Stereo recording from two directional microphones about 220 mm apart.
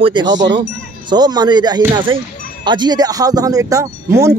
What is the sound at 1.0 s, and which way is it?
Speech, 20° right (ahead or behind).